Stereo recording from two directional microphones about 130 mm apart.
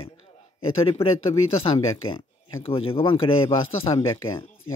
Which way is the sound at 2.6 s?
45° left (ahead or behind).